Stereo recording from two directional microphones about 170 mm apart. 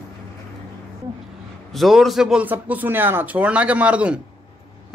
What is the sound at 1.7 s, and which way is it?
A man's voice, centre (ahead or behind).